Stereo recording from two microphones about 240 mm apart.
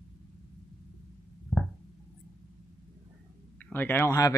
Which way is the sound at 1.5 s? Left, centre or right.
Centre.